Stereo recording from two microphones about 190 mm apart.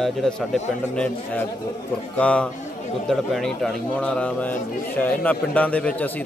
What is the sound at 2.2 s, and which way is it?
A man's voice, 5° left (ahead or behind).